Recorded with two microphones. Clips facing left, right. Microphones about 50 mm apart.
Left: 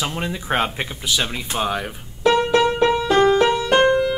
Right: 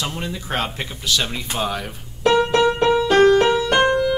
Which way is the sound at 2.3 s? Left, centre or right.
Centre.